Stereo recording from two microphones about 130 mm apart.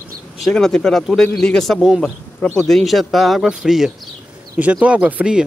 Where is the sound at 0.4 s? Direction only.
5° left (ahead or behind).